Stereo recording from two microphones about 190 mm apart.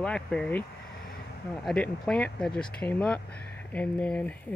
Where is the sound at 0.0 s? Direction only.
5° left (ahead or behind).